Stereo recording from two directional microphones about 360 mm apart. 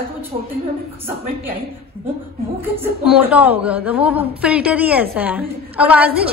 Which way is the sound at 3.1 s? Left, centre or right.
Centre.